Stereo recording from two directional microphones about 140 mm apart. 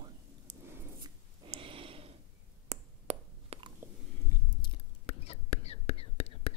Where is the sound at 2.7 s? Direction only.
50° right (ahead or behind).